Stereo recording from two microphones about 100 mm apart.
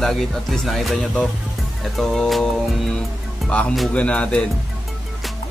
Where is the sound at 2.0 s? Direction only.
5° left (ahead or behind).